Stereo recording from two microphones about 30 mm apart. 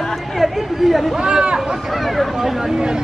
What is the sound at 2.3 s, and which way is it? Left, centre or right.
Speech, centre.